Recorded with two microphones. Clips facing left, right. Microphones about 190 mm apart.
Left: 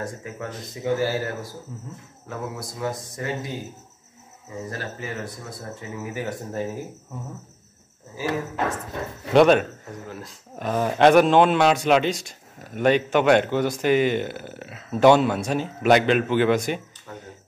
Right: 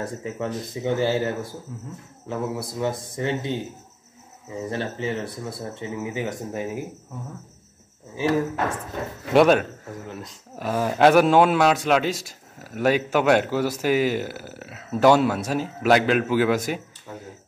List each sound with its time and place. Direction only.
0.0 s speech: 25° right (ahead or behind)
1.7 s a man's voice: centre (ahead or behind)
2.3 s speech: 25° right (ahead or behind)
4.6 s speech: 25° right (ahead or behind)
9.3 s a man's voice: 5° right (ahead or behind)